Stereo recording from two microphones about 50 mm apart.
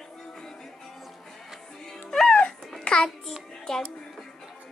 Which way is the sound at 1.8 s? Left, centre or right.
Centre.